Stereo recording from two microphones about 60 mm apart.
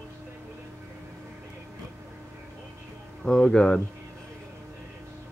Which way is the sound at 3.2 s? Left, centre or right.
Centre.